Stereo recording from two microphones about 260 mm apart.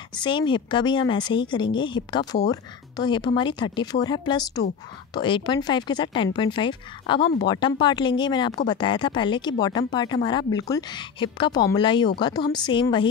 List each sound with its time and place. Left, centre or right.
0.1 s speech: centre